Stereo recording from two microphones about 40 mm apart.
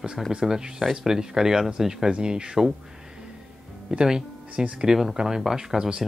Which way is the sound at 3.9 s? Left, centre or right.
Centre.